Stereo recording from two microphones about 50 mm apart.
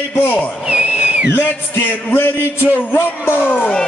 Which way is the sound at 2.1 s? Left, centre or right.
Left.